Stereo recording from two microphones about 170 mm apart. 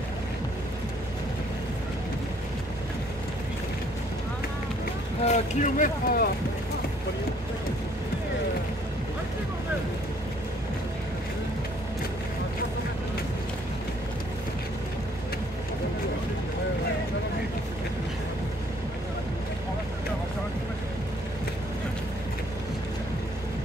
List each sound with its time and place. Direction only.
5.2 s speech: 45° left (ahead or behind)